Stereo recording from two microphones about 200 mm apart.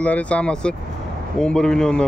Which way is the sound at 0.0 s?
5° left (ahead or behind).